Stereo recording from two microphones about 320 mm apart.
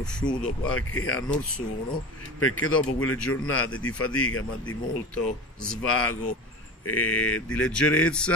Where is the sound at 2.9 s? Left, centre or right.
Left.